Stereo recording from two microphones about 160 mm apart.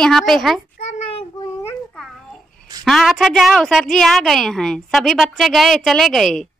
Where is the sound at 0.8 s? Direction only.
50° left (ahead or behind).